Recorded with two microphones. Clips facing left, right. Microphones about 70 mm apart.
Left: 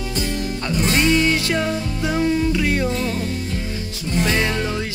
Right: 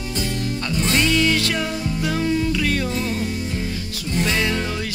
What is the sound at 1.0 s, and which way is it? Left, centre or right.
Music, left.